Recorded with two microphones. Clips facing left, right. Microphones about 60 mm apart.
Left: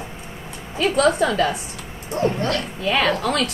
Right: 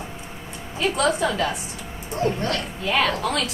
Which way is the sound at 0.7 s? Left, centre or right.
Left.